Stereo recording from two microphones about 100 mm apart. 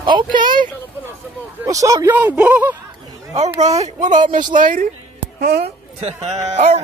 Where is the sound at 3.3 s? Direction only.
90° right.